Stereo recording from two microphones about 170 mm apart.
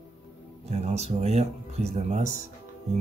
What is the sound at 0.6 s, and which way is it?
Speech, 40° right (ahead or behind).